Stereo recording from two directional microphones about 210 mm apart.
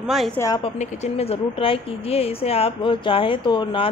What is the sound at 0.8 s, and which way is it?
Speech, 30° left (ahead or behind).